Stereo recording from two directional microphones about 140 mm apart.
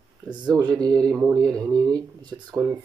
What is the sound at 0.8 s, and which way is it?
Speech, 25° right (ahead or behind).